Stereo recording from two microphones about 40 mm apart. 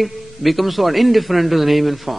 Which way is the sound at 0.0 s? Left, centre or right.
Centre.